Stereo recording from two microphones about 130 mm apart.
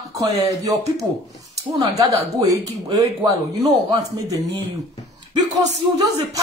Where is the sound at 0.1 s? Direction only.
25° right (ahead or behind).